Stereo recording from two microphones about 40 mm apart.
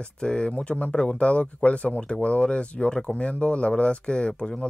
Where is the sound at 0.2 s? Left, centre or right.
Left.